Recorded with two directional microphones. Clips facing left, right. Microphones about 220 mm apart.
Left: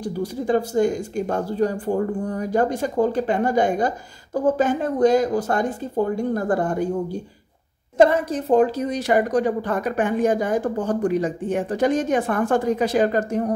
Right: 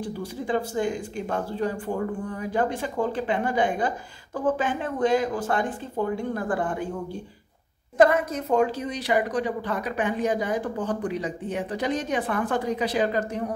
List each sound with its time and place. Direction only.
0.0 s speech: 40° left (ahead or behind)
8.0 s a woman's voice: 30° left (ahead or behind); by 13.5 s 45° left (ahead or behind)